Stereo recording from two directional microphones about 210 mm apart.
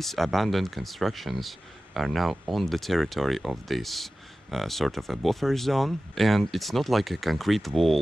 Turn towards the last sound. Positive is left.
turn(degrees=0)  # may be behind; listen again after turning